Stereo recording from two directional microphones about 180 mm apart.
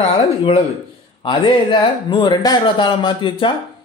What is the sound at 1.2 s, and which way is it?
A man's voice, 25° left (ahead or behind).